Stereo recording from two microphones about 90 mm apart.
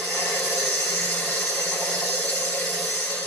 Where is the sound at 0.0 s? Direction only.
25° left (ahead or behind).